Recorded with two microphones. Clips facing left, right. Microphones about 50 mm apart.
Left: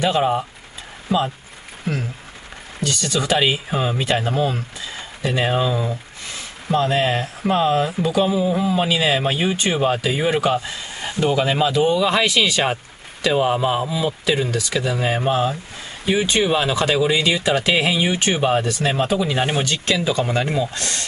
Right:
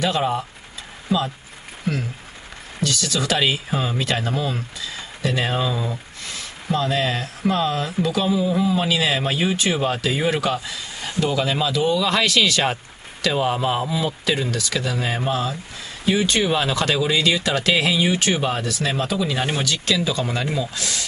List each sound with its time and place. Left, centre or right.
0.0 s speech: centre
1.0 s a sound: left
2.8 s speech: left
3.1 s speech: centre
4.4 s speech: left
5.3 s speech: centre
6.7 s speech: left; by 10.4 s centre
10.4 s speech: left
12.1 s speech: centre
19.2 s speech: centre
19.7 s speech: left
20.7 s speech: left